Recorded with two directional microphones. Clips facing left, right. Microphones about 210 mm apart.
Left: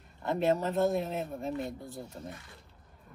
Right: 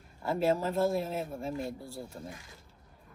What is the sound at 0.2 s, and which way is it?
Speech, centre (ahead or behind).